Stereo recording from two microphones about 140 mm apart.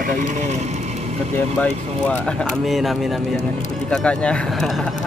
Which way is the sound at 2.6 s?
Centre (ahead or behind).